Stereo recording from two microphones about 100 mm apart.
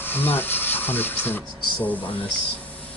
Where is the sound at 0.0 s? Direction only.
20° left (ahead or behind).